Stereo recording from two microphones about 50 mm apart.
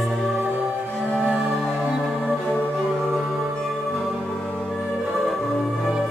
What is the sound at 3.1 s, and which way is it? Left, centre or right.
Music, centre.